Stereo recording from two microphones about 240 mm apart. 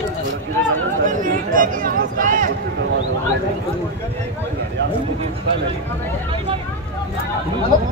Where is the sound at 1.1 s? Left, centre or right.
Right.